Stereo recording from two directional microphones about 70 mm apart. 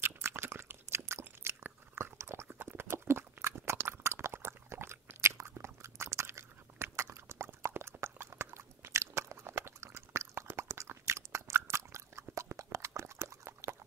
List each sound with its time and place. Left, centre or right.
0.0 s biting: right
2.6 s chewing: right
12.7 s a sound: right